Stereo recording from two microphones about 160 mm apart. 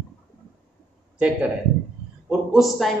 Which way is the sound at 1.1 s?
10° right (ahead or behind).